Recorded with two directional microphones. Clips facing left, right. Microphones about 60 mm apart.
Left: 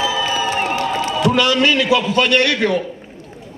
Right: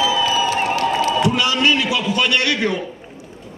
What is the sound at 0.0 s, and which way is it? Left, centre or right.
Music, left.